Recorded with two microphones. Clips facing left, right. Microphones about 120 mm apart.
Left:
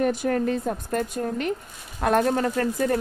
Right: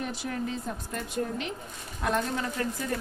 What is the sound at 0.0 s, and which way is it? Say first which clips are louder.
Speech: left 10 dB; 50° left (ahead or behind).